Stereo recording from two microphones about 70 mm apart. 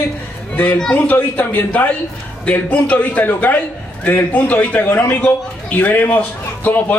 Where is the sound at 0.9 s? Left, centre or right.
Left.